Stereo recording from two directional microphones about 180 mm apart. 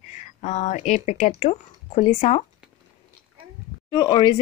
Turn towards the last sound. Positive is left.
turn(degrees=25)  # may be behind; listen again after turning